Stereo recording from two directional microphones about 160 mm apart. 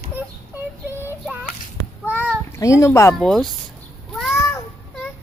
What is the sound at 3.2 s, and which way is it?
Speech, centre (ahead or behind).